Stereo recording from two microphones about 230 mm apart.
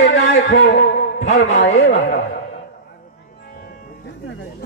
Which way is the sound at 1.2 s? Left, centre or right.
Left.